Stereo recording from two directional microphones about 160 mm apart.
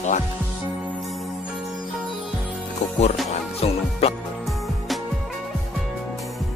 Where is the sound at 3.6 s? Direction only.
40° left (ahead or behind).